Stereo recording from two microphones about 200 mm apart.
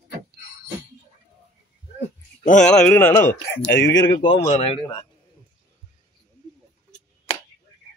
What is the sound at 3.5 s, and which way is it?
Speech, 55° left (ahead or behind).